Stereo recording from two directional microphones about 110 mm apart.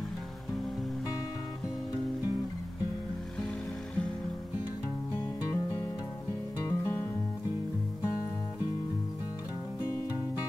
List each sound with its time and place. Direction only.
6.6 s music: 25° left (ahead or behind)